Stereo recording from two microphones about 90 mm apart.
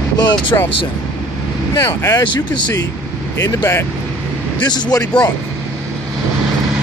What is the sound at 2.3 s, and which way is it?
Speech, 55° left (ahead or behind).